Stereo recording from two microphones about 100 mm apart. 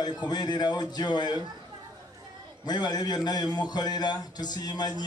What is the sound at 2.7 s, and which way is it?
A man's voice, 45° left (ahead or behind).